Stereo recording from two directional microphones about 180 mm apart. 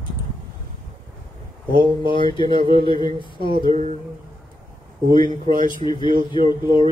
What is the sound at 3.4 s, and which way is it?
Speech, 50° right (ahead or behind).